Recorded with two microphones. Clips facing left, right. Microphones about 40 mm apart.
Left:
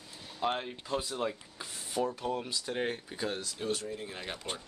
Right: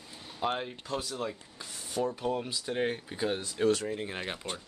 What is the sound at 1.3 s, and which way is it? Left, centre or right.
Rub, centre.